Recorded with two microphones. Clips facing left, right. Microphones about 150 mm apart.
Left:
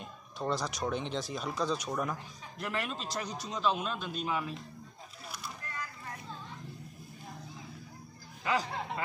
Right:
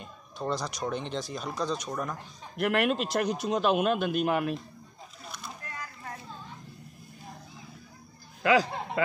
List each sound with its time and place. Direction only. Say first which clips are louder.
0.0 s speech: right 2 dB; centre (ahead or behind)
2.5 s a man's voice: right 11 dB; 70° right (ahead or behind)
8.4 s speech: right 8 dB; 90° right